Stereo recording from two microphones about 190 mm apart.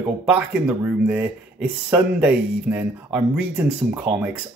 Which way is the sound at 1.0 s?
5° right (ahead or behind).